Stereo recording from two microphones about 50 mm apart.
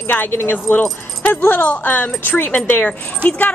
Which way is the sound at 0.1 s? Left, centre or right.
Left.